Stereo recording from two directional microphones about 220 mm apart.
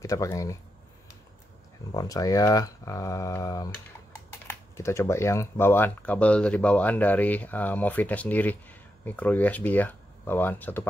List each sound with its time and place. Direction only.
0.0 s speech: 15° left (ahead or behind)
2.0 s speech: 15° left (ahead or behind)